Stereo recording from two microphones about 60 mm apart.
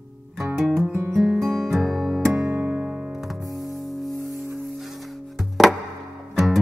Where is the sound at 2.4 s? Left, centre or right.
Right.